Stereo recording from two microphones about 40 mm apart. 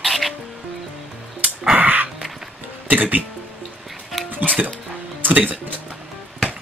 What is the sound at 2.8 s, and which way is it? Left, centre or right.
Speech, right.